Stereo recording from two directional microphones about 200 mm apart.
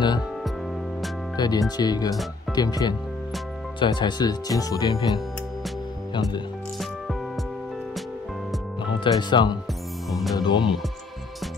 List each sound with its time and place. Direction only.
1.3 s speech: 20° left (ahead or behind)
9.0 s speech: 20° left (ahead or behind)